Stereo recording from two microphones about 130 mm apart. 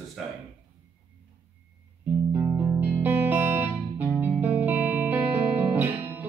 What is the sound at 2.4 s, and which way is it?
Music, 20° right (ahead or behind).